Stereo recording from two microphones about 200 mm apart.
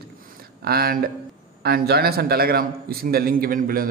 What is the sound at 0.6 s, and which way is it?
A man's voice, 50° right (ahead or behind).